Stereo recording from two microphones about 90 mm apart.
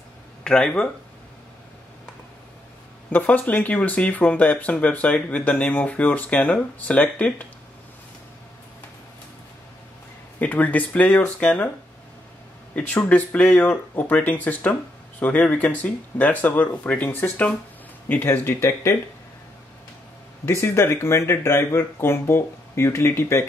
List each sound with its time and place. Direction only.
0.4 s speech: 10° left (ahead or behind)
3.1 s speech: 15° left (ahead or behind)
10.4 s speech: 15° left (ahead or behind)
12.7 s speech: 15° left (ahead or behind)
20.4 s speech: 30° left (ahead or behind)